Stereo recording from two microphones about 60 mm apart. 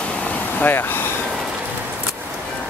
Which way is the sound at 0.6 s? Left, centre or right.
Left.